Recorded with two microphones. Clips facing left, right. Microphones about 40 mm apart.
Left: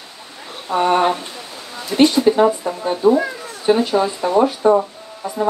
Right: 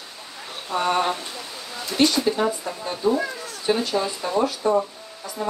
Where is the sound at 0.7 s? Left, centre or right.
Left.